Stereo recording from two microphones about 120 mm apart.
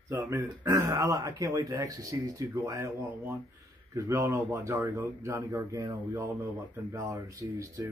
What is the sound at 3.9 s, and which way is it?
Speech, 25° right (ahead or behind).